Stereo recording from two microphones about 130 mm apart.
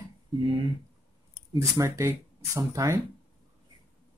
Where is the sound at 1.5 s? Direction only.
25° right (ahead or behind).